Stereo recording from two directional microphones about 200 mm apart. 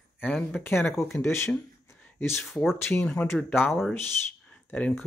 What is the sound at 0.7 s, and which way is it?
Speech, 10° left (ahead or behind).